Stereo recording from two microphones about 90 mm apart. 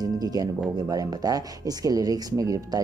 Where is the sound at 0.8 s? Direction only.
45° right (ahead or behind).